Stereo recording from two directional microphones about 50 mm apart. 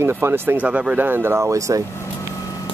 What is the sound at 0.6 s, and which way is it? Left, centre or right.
Speech, right.